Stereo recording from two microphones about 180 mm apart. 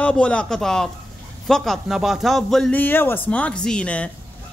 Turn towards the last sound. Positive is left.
turn(degrees=5)  # may be behind; listen again after turning